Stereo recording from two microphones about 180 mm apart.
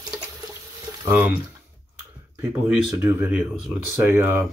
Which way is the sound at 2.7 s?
5° right (ahead or behind).